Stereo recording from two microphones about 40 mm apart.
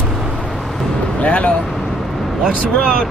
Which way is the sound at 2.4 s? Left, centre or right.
Right.